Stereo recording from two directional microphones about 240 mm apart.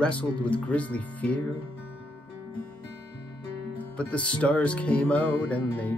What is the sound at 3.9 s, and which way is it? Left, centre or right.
Music, centre.